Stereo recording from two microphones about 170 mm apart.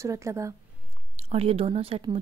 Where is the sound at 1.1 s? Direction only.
35° right (ahead or behind).